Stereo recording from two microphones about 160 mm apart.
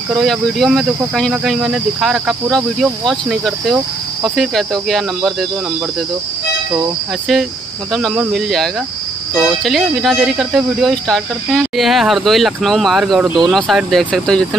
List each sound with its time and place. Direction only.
0.1 s speech: centre (ahead or behind)
8.3 s speech: centre (ahead or behind)